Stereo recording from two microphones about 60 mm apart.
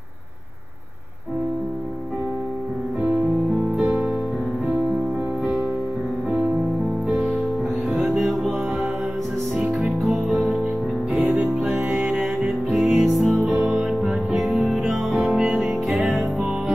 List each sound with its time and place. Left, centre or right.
3.8 s music: centre
8.1 s music: centre
9.6 s music: centre
11.2 s music: right
12.1 s music: centre
13.6 s music: centre
15.9 s music: centre